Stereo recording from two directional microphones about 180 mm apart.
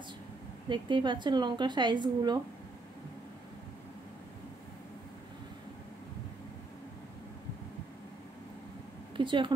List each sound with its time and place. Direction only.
0.7 s a woman's voice: 25° right (ahead or behind)
9.1 s speech: 25° right (ahead or behind)